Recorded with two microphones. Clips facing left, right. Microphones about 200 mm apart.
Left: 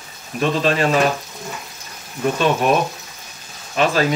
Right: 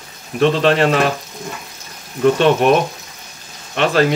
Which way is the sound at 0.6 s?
65° right (ahead or behind).